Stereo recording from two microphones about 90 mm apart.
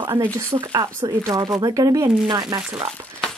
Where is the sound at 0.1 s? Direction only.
30° right (ahead or behind).